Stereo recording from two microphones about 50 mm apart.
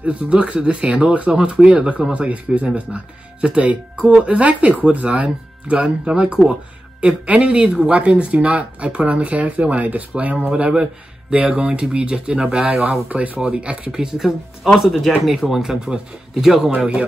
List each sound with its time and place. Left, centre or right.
0.0 s speech: right
10.7 s speech: centre
13.1 s speech: right
13.4 s speech: centre
16.7 s speech: right